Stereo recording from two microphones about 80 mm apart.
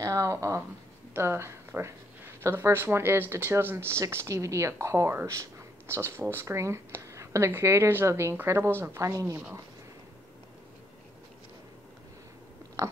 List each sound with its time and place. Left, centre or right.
0.0 s speech: right